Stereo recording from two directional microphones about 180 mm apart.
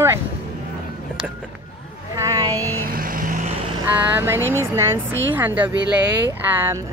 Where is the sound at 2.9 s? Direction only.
50° right (ahead or behind).